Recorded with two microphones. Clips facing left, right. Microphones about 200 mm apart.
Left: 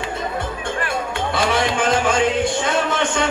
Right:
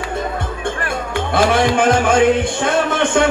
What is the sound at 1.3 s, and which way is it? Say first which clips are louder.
A man's voice: right 6 dB; 55° right (ahead or behind).